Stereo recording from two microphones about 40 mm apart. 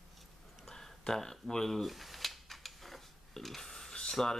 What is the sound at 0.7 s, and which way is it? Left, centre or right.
Speech, centre.